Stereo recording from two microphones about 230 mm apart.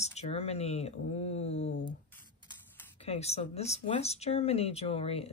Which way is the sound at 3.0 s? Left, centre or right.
Left.